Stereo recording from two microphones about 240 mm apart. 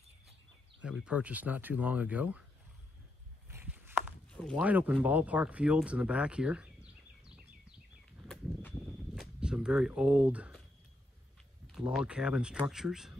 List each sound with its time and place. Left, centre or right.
0.8 s speech: centre
3.4 s walk: centre
4.5 s speech: centre
9.1 s a sound: centre
11.7 s speech: centre